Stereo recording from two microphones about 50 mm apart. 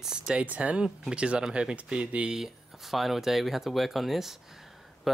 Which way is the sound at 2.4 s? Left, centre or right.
Centre.